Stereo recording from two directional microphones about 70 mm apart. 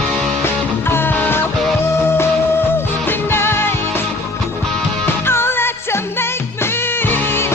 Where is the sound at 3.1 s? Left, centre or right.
Left.